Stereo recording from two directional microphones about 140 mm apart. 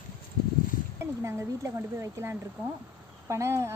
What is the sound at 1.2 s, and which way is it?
Speech, 20° right (ahead or behind).